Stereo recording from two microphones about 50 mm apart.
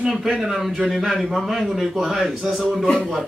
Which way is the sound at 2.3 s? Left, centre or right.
Centre.